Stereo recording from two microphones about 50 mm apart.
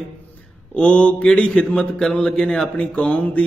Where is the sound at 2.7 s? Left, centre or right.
Left.